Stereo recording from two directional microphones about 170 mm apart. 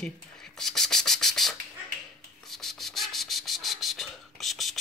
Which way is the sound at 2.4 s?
Centre (ahead or behind).